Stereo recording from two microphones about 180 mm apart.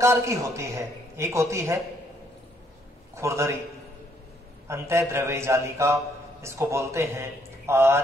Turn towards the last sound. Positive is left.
turn(degrees=-15)  # may be behind; listen again after turning